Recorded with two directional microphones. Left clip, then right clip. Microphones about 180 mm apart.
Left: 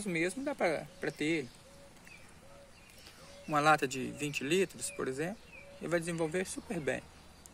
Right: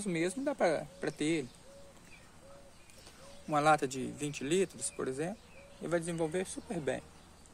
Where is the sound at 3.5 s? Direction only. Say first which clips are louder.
Even; 5° right (ahead or behind).